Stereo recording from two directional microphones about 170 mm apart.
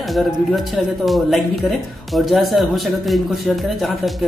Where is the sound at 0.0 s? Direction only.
Centre (ahead or behind).